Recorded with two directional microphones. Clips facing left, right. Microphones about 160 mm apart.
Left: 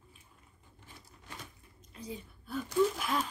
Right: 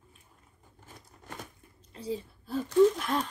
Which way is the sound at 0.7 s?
45° right (ahead or behind).